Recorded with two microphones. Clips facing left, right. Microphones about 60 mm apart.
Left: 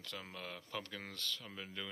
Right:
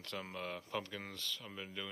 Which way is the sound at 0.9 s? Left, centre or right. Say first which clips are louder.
Even; centre.